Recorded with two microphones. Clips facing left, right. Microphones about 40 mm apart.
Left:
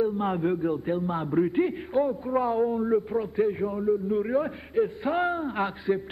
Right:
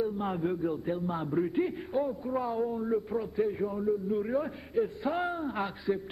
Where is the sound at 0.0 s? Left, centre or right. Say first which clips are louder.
Left 5 dB; left.